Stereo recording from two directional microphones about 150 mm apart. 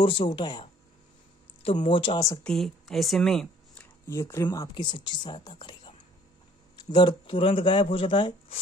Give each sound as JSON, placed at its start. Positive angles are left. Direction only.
{"t": 0.0, "sound": "speech", "side_deg": 40}
{"t": 1.9, "sound": "speech", "side_deg": 35}
{"t": 2.4, "sound": "speech", "side_deg": 5}
{"t": 4.1, "sound": "speech", "side_deg": 20}